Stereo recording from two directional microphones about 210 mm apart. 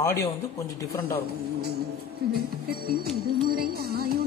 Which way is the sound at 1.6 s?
50° right (ahead or behind).